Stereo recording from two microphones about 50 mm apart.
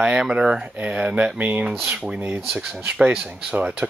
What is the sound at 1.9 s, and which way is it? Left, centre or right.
Speech, centre.